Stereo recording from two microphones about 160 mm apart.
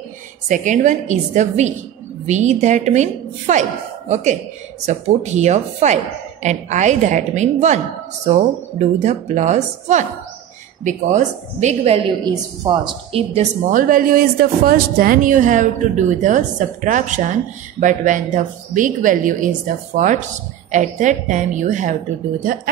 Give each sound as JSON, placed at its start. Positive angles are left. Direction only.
{"t": 0.5, "sound": "a woman's voice", "side_deg": -50}
{"t": 12.3, "sound": "a woman's voice", "side_deg": -30}
{"t": 13.7, "sound": "a woman's voice", "side_deg": -60}